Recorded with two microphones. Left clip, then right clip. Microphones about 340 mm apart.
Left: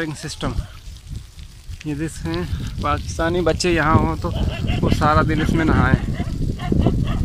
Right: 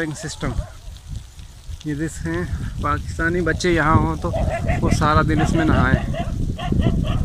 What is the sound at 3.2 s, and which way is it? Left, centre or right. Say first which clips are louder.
Speech: left 2 dB; left.